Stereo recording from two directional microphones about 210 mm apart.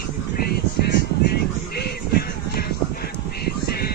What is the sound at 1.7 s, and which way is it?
Music, 50° left (ahead or behind).